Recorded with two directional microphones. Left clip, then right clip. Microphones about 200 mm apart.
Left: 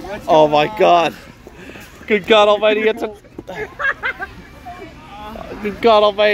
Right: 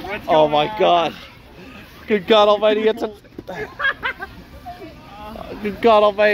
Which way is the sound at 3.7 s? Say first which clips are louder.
Left 1 dB; centre (ahead or behind).